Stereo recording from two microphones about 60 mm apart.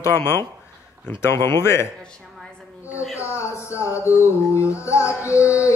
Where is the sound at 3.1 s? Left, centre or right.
Left.